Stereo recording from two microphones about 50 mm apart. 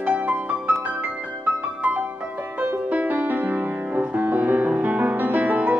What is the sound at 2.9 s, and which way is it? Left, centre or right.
Music, right.